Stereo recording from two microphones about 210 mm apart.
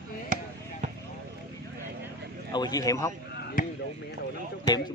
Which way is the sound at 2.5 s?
20° left (ahead or behind).